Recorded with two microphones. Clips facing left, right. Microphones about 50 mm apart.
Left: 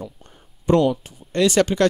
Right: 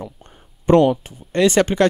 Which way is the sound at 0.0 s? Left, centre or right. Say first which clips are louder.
Right 2 dB; right.